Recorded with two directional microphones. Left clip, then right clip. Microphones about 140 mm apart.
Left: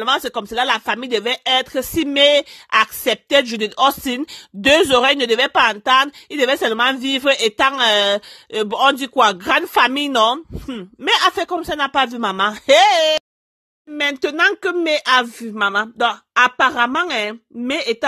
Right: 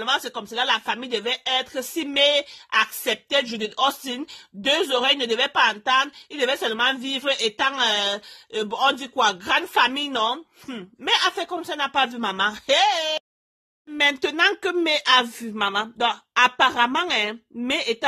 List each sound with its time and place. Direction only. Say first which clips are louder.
0.0 s speech: left 6 dB; 50° left (ahead or behind)
13.9 s speech: left 2 dB; 25° left (ahead or behind)